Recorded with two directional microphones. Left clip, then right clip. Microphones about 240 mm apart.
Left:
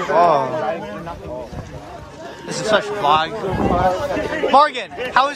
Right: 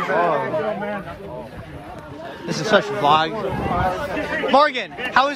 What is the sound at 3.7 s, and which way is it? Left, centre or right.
Speech, left.